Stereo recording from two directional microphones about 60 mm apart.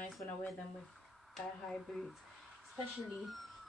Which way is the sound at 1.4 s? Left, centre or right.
Centre.